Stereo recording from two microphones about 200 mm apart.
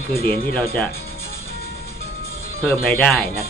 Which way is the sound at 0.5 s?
10° left (ahead or behind).